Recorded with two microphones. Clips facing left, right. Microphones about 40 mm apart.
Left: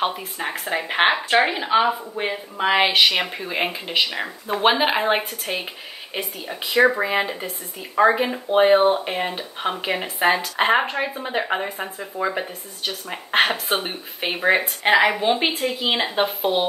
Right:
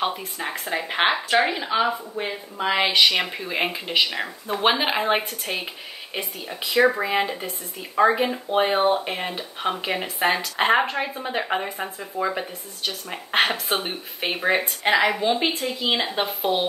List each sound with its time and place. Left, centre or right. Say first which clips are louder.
0.0 s speech: left 2 dB; centre
3.0 s speech: left 1 dB; centre
14.8 s speech: left 3 dB; centre